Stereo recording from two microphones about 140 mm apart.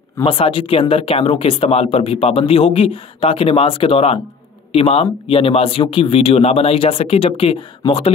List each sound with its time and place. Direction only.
0.2 s speech: 40° left (ahead or behind)